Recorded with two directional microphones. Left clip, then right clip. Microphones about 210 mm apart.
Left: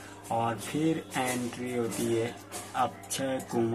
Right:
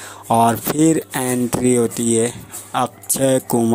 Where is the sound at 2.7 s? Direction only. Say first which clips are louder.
Right 10 dB; 55° right (ahead or behind).